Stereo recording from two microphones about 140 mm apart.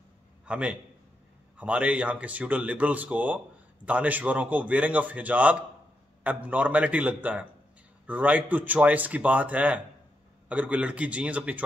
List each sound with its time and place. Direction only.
0.5 s a man's voice: 10° right (ahead or behind)